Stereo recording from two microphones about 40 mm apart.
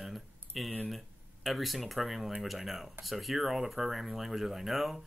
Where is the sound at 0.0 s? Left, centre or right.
Centre.